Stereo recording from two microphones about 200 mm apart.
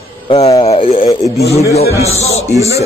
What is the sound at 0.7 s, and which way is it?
Speech, 30° left (ahead or behind).